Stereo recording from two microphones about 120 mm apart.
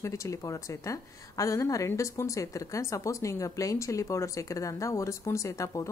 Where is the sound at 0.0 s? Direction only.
25° left (ahead or behind).